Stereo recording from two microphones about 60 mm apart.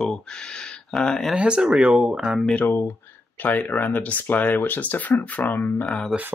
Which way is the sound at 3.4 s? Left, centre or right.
Left.